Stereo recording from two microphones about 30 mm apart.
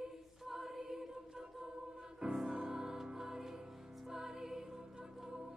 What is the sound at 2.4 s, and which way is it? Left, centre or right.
Music, right.